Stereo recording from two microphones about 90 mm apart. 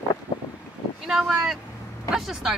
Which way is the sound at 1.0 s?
5° right (ahead or behind).